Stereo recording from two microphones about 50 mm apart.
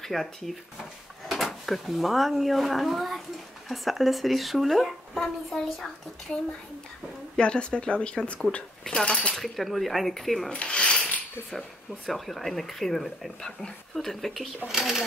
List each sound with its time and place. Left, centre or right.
0.0 s a child's voice: centre
7.3 s speech: left
9.3 s speech: centre
10.5 s mechanisms: left
12.1 s speech: centre
14.7 s speech: centre